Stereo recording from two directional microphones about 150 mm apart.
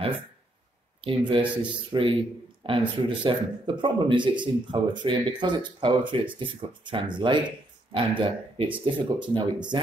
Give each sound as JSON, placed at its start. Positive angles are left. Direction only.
{"t": 1.0, "sound": "speech", "side_deg": -40}
{"t": 1.4, "sound": "a man's voice", "side_deg": -10}
{"t": 1.9, "sound": "speech", "side_deg": -35}